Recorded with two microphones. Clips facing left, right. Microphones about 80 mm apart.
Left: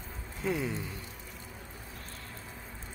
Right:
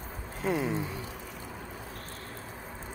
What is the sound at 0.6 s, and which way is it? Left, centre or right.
Speech, right.